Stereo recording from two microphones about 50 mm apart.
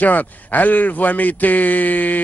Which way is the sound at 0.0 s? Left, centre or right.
Left.